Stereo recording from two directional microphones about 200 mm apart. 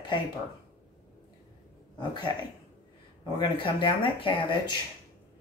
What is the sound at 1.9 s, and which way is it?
Speech, 25° left (ahead or behind).